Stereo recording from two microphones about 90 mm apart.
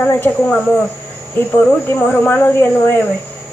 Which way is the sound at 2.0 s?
20° left (ahead or behind).